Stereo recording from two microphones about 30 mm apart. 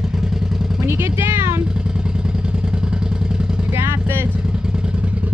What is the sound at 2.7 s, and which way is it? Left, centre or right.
Vehicle, right.